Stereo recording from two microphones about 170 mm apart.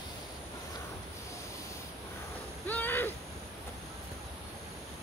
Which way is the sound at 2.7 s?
10° left (ahead or behind).